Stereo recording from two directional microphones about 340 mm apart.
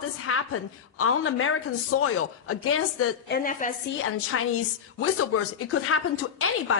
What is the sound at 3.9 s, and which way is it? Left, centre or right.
A woman's voice, left.